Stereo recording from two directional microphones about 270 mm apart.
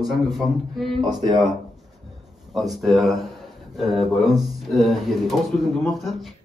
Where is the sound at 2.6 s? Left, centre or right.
Centre.